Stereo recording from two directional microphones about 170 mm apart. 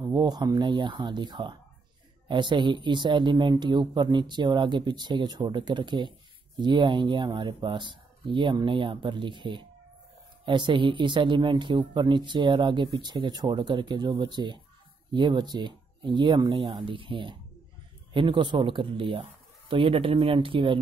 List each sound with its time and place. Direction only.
0.0 s speech: 25° right (ahead or behind)